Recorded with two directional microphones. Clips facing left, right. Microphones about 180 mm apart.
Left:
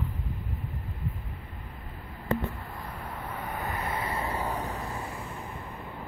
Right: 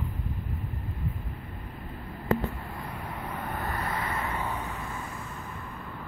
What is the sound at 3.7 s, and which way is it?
Vehicle, 15° left (ahead or behind).